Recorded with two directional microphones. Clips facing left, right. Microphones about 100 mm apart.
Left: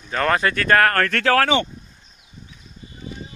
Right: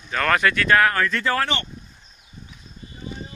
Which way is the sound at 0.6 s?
50° left (ahead or behind).